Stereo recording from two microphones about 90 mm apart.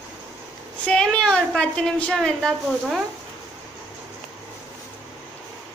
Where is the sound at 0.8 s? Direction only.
10° left (ahead or behind).